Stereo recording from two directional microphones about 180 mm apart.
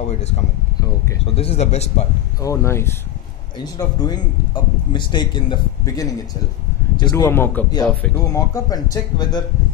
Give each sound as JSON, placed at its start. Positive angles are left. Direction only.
{"t": 1.2, "sound": "speech", "side_deg": 30}
{"t": 2.4, "sound": "a man's voice", "side_deg": 15}